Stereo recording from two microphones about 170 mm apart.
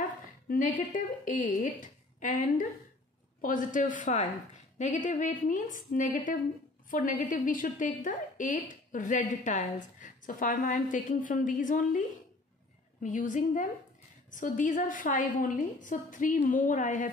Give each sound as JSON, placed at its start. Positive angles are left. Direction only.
{"t": 0.0, "sound": "a woman's voice", "side_deg": 50}
{"t": 13.0, "sound": "a woman's voice", "side_deg": 50}